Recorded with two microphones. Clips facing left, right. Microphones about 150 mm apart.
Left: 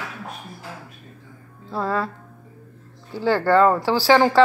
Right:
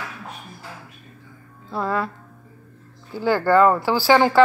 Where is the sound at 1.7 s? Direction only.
35° left (ahead or behind).